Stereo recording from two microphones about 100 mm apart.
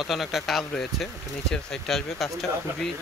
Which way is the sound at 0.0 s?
Centre (ahead or behind).